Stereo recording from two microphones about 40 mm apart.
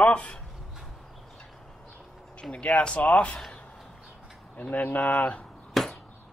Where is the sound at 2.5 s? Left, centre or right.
Left.